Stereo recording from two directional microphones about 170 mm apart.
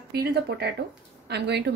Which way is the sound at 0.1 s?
65° right (ahead or behind).